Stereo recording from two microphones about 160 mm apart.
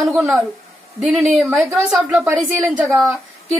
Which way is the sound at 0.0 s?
5° right (ahead or behind).